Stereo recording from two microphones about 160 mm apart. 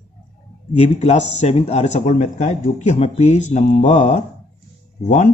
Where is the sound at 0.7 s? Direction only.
45° left (ahead or behind).